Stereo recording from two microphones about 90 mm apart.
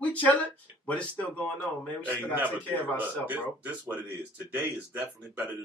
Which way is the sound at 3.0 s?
20° right (ahead or behind).